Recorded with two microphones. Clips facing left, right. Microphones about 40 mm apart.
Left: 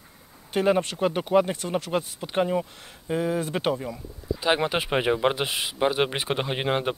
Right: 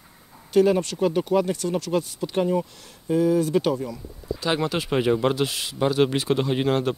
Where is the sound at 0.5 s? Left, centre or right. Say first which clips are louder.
Right 3 dB; left.